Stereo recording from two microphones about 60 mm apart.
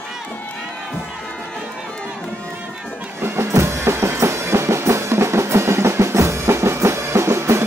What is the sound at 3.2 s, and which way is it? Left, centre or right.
Music, right.